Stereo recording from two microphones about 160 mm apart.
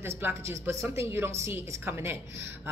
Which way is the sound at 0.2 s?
15° right (ahead or behind).